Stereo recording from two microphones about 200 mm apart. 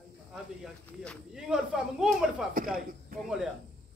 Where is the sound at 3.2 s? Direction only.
5° right (ahead or behind).